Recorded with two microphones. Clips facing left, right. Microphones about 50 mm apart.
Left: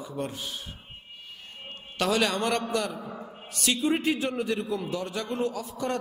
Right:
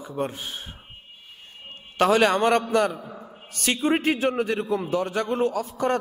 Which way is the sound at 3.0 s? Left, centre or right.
Centre.